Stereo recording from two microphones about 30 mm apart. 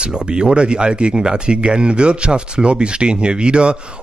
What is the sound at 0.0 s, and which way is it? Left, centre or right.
Speech, right.